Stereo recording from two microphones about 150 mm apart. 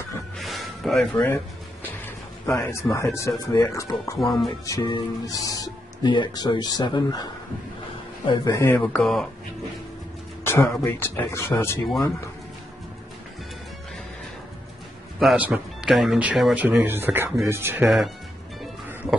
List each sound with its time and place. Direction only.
0.4 s music: centre (ahead or behind)
1.1 s a sound: 10° left (ahead or behind)
2.4 s speech: 20° left (ahead or behind)
4.2 s speech: centre (ahead or behind)
4.6 s speech: 25° left (ahead or behind)
8.3 s speech: 20° left (ahead or behind)
9.0 s speech: centre (ahead or behind)
10.4 s speech: 15° left (ahead or behind)
15.1 s speech: 5° right (ahead or behind)